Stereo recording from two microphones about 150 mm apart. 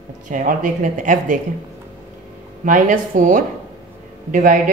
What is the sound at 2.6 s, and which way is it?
A woman's voice, 60° right (ahead or behind).